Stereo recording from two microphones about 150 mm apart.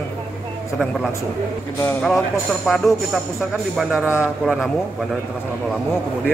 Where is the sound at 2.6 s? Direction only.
Centre (ahead or behind).